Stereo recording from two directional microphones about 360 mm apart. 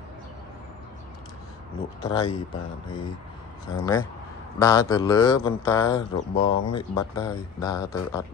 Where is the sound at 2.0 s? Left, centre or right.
Centre.